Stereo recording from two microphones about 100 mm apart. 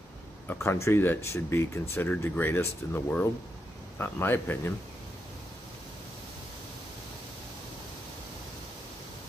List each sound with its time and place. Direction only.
0.5 s speech: 25° left (ahead or behind)